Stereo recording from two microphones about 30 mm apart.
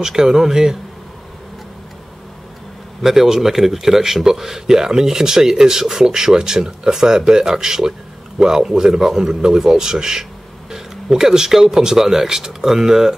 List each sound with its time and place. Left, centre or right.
0.0 s speech: centre
3.0 s speech: centre